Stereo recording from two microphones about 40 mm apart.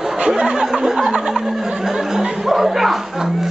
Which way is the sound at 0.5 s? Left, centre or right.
Centre.